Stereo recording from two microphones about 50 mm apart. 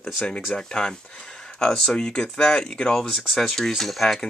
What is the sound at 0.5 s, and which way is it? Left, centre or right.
Speech, centre.